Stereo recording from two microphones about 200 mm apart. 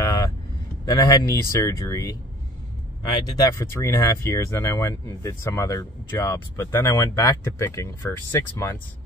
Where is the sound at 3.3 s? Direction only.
15° left (ahead or behind).